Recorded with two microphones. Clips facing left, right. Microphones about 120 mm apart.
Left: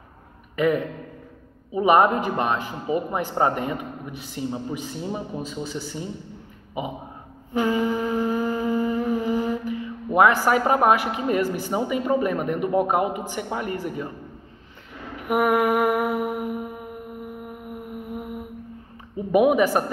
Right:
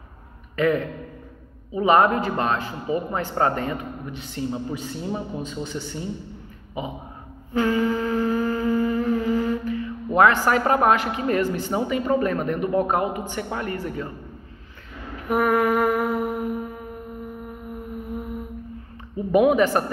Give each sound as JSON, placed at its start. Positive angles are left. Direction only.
{"t": 0.6, "sound": "speech", "side_deg": 10}
{"t": 6.8, "sound": "speech", "side_deg": 20}
{"t": 7.5, "sound": "humming", "side_deg": 15}
{"t": 10.1, "sound": "speech", "side_deg": 10}
{"t": 15.2, "sound": "mantra", "side_deg": 15}
{"t": 16.3, "sound": "music", "side_deg": 10}
{"t": 19.3, "sound": "speech", "side_deg": 10}